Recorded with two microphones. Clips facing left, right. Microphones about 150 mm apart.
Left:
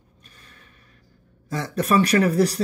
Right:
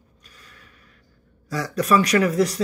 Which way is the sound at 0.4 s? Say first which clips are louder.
Right 2 dB; 30° left (ahead or behind).